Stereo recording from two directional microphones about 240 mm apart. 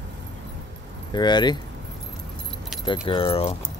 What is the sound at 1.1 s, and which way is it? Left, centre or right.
Speech, centre.